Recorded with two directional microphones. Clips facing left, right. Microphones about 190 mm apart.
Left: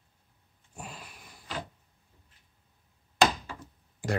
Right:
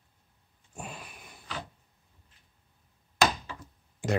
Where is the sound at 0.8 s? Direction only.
20° right (ahead or behind).